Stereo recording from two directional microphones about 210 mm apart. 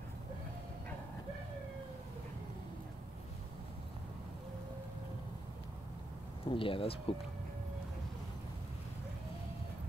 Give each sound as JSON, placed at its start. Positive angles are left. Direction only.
{"t": 6.4, "sound": "speech", "side_deg": 25}